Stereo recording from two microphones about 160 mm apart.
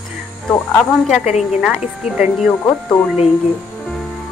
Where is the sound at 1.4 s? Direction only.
5° right (ahead or behind).